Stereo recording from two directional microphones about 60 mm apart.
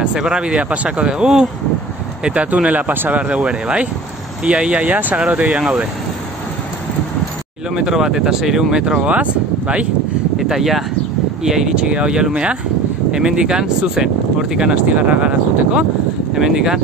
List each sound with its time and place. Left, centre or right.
0.0 s speech: centre; by 3.2 s right
3.2 s speech: centre
7.7 s speech: centre
9.0 s speech: right
10.5 s speech: centre